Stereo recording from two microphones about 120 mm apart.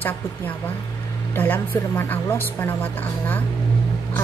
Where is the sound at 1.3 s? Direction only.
15° left (ahead or behind).